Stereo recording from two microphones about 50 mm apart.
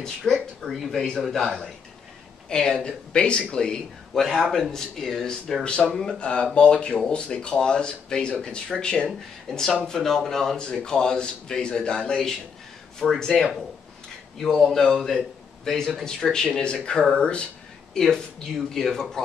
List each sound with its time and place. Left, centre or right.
0.2 s a sound: centre
0.7 s speech: centre
2.5 s a man's voice: centre
9.0 s a man's voice: centre
17.9 s a man's voice: centre